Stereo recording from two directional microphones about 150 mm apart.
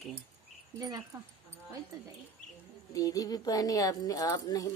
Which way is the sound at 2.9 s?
25° left (ahead or behind).